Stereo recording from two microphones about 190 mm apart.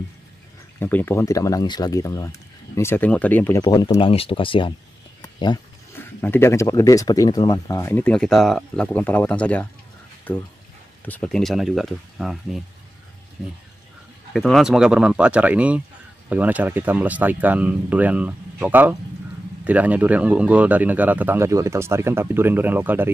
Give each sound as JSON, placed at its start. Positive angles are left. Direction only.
{"t": 0.7, "sound": "speech", "side_deg": 10}
{"t": 3.6, "sound": "speech", "side_deg": 20}
{"t": 5.2, "sound": "a sound", "side_deg": 20}
{"t": 6.2, "sound": "speech", "side_deg": 10}